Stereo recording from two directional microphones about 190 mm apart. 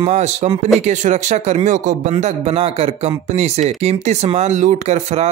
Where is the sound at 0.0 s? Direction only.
35° right (ahead or behind).